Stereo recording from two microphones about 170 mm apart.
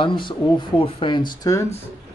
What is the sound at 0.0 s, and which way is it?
Speech, 30° left (ahead or behind).